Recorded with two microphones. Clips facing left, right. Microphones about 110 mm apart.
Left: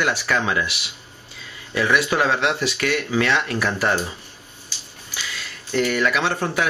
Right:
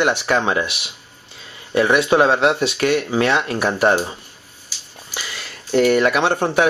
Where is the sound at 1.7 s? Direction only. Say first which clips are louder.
Right 5 dB; 25° right (ahead or behind).